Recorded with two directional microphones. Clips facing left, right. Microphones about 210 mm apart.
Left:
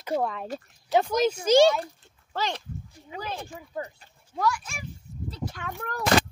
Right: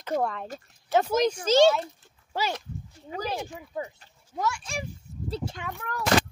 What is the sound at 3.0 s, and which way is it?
Speech, 40° right (ahead or behind).